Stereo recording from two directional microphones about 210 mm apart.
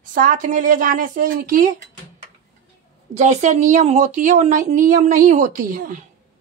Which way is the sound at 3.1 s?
35° right (ahead or behind).